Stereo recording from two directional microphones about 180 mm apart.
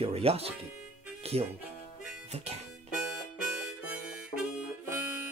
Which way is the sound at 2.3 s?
35° right (ahead or behind).